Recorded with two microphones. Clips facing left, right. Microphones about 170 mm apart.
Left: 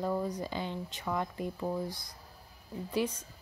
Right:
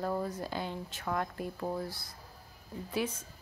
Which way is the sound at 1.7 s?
15° left (ahead or behind).